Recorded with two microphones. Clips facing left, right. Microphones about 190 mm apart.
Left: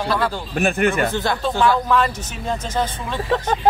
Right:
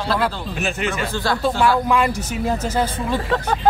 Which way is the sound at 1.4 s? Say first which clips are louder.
Right 1 dB; 10° right (ahead or behind).